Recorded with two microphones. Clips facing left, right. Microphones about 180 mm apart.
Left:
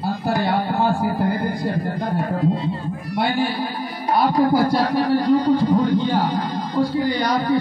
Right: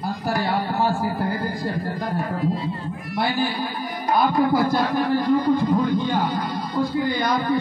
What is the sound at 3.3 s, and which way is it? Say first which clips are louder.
Speech: left 2 dB; 30° left (ahead or behind).